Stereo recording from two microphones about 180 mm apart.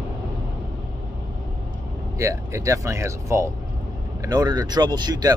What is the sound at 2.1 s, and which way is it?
Speech, 15° right (ahead or behind).